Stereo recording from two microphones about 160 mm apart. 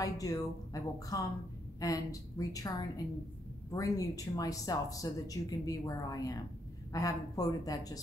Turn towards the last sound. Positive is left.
turn(degrees=25)  # may be behind; listen again after turning